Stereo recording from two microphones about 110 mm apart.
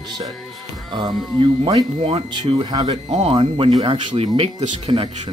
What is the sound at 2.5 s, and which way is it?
Speech, 60° right (ahead or behind).